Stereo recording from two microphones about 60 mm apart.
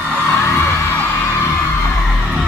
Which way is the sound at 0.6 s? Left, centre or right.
Left.